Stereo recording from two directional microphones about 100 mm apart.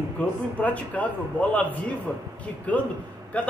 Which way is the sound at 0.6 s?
15° left (ahead or behind).